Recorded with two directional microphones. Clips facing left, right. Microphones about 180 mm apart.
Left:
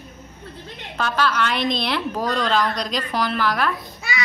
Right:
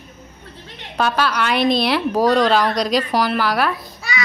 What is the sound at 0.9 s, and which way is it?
A woman's voice, 15° right (ahead or behind).